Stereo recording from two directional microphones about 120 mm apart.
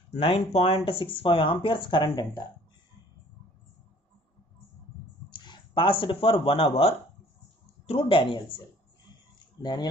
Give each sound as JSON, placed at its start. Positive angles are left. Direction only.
{"t": 0.1, "sound": "speech", "side_deg": 55}
{"t": 5.3, "sound": "speech", "side_deg": 40}
{"t": 9.6, "sound": "speech", "side_deg": 35}